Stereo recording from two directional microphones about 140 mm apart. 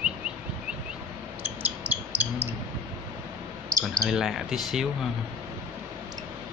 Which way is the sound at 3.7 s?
25° right (ahead or behind).